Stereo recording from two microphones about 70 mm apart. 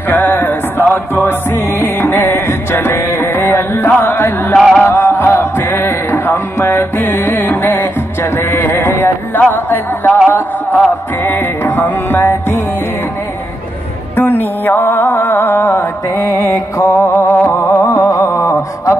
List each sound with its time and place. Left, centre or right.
0.1 s music: left
4.6 s music: centre
4.8 s music: left
14.1 s music: left
18.2 s mantra: left